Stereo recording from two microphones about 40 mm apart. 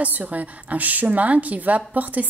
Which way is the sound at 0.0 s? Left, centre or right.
Right.